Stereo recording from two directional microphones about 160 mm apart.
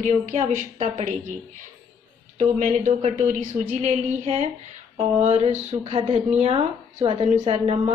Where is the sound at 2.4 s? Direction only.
50° right (ahead or behind).